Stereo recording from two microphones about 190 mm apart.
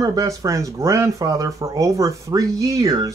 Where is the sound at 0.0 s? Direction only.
20° right (ahead or behind).